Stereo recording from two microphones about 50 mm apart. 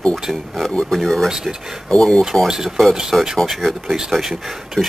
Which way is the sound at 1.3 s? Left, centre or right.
Centre.